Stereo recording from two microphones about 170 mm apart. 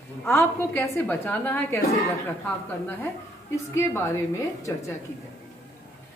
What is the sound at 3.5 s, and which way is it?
Speech, 15° left (ahead or behind).